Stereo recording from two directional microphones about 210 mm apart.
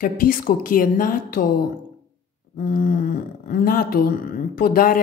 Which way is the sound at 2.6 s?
40° left (ahead or behind).